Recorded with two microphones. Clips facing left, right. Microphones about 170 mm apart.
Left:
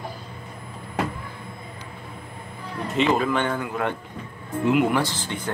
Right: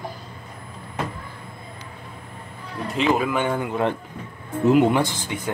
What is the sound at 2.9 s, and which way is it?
Speech, 5° right (ahead or behind).